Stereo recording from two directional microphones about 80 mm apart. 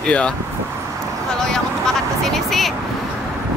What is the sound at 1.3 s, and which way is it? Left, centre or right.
Vehicle, centre.